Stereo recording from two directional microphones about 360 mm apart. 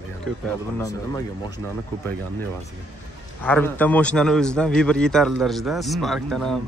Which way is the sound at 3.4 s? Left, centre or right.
Centre.